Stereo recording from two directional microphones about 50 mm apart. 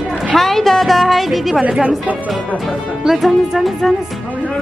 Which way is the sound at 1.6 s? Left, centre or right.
Centre.